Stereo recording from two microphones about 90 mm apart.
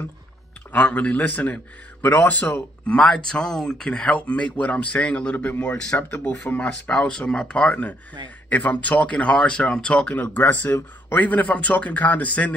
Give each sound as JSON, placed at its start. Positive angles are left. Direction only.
{"t": 0.7, "sound": "speech", "side_deg": 20}